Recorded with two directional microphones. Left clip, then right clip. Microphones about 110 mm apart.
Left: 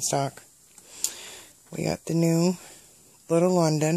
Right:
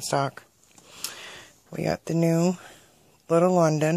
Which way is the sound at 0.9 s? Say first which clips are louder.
Left 2 dB; 15° left (ahead or behind).